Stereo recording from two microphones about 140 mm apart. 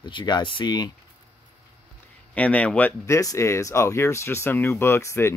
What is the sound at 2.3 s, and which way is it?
Speech, 10° left (ahead or behind).